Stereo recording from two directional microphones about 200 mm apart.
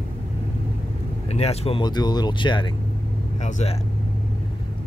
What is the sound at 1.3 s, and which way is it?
Speech, 30° left (ahead or behind).